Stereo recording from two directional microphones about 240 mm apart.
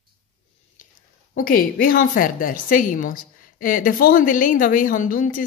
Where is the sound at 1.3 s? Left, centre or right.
Left.